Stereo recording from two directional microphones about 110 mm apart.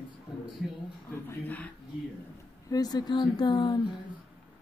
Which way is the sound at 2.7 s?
35° left (ahead or behind).